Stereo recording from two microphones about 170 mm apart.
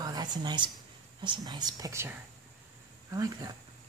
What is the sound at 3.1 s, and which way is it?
Speech, 20° right (ahead or behind).